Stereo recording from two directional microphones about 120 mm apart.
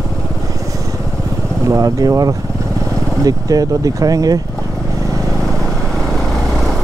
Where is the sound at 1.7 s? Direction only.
30° right (ahead or behind).